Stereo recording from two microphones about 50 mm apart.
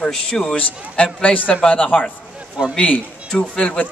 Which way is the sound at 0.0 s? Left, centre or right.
Centre.